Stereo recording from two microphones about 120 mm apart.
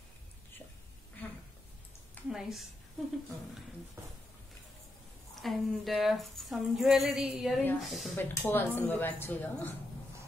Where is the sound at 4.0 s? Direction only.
25° right (ahead or behind).